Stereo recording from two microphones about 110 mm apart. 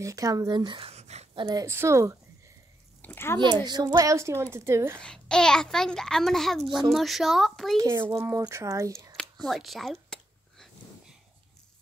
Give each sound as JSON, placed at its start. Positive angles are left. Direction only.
{"t": 0.0, "sound": "speech", "side_deg": -30}
{"t": 0.7, "sound": "a sound", "side_deg": -70}
{"t": 1.4, "sound": "speech", "side_deg": -35}
{"t": 1.7, "sound": "a woman's voice", "side_deg": -25}
{"t": 3.0, "sound": "speech", "side_deg": 20}
{"t": 3.3, "sound": "a woman's voice", "side_deg": -40}
{"t": 5.0, "sound": "a child's voice", "side_deg": 5}
{"t": 8.1, "sound": "a woman's voice", "side_deg": -25}
{"t": 9.1, "sound": "a sound", "side_deg": 0}